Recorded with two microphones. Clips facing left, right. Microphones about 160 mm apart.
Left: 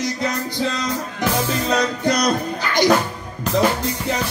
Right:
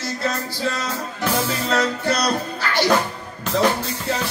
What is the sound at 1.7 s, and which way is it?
Music, 15° left (ahead or behind).